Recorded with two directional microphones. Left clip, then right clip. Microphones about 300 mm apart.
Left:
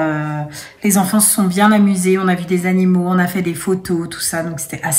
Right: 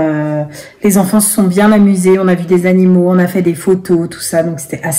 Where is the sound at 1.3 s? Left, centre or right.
Centre.